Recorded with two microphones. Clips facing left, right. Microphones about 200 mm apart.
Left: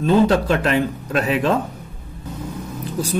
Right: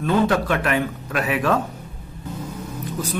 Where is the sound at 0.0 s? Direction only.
25° left (ahead or behind).